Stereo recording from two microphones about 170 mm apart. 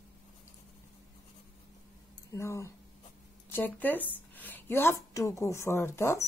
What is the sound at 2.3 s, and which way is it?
A woman's voice, 15° left (ahead or behind).